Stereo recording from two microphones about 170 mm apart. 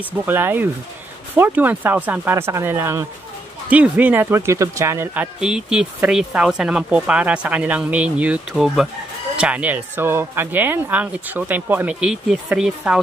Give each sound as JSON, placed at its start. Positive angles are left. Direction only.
{"t": 0.2, "sound": "speech", "side_deg": -10}